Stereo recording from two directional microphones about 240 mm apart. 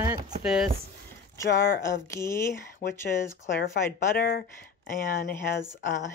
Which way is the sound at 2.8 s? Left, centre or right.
Left.